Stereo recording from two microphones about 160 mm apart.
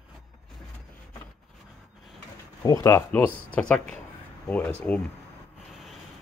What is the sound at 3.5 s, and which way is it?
Speech, 10° left (ahead or behind).